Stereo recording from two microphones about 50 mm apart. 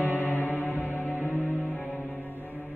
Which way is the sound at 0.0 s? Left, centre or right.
Left.